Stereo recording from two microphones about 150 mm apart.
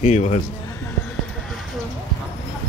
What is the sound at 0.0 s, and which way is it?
Speech, 55° left (ahead or behind).